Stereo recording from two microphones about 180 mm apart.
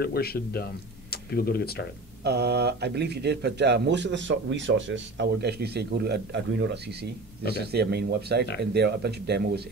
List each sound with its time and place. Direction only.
0.0 s speech: 60° left (ahead or behind)
2.2 s speech: 65° right (ahead or behind); by 7.1 s 80° right
7.5 s speech: 65° right (ahead or behind)